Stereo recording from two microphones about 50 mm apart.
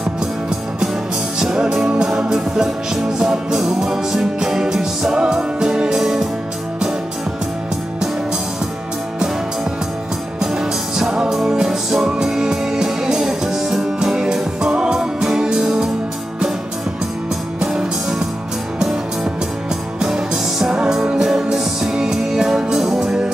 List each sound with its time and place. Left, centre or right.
1.4 s music: centre
10.4 s music: centre
20.0 s music: centre